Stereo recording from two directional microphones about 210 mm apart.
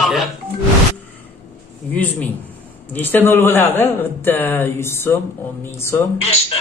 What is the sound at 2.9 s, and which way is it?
A man's voice, 10° left (ahead or behind).